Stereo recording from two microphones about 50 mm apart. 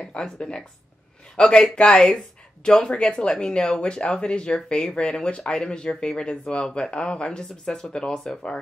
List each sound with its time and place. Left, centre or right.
0.0 s speech: centre